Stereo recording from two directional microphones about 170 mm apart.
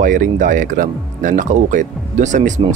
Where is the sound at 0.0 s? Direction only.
50° right (ahead or behind).